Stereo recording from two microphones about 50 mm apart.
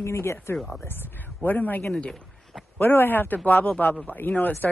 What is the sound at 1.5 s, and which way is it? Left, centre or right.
Speech, left.